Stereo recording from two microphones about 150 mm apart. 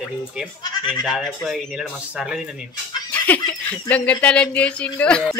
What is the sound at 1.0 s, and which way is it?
Speech, centre (ahead or behind).